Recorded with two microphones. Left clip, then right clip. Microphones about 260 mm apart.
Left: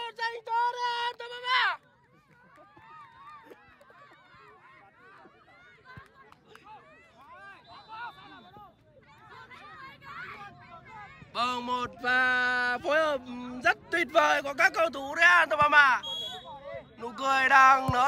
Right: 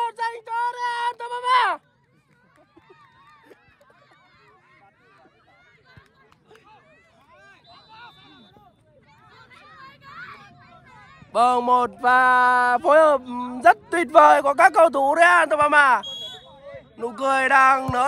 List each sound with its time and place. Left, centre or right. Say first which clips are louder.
0.0 s child singing: right 8 dB; centre
2.9 s run: left 4 dB; centre
7.2 s a sound: left 1 dB; centre
9.3 s a child's voice: even; centre